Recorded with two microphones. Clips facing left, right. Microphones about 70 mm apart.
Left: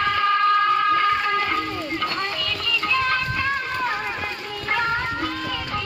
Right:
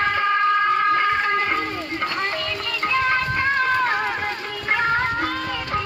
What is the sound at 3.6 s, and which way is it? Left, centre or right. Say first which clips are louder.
Run: right 5 dB; right.